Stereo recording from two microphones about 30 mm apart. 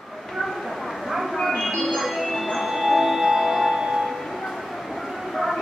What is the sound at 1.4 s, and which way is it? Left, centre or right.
Music, centre.